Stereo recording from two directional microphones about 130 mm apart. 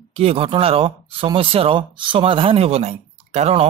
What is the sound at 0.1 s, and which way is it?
Speech, 45° right (ahead or behind).